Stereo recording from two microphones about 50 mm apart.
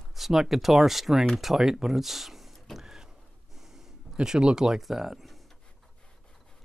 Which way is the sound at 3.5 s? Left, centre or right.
Centre.